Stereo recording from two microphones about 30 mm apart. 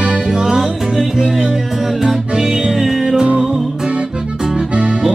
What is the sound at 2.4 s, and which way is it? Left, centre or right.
Music, right.